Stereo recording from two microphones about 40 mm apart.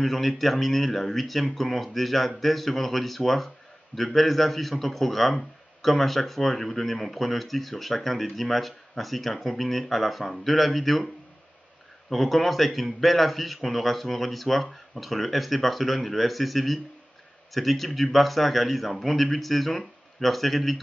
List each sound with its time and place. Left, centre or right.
0.0 s speech: centre
12.1 s speech: centre